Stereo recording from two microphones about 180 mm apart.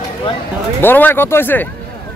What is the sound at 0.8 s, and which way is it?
Speech, 10° left (ahead or behind).